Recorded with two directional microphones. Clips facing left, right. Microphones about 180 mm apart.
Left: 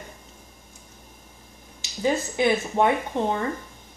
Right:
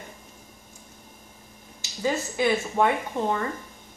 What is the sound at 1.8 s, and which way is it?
A woman's voice, 20° left (ahead or behind).